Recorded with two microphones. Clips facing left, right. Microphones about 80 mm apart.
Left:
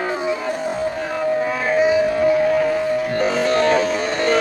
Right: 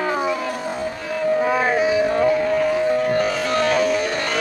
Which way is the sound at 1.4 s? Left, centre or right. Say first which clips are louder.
Right 3 dB; right.